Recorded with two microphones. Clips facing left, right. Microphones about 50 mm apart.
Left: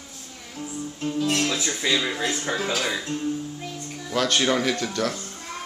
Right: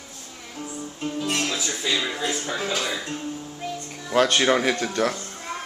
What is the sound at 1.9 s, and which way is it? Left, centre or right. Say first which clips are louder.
Music: left 1 dB; centre.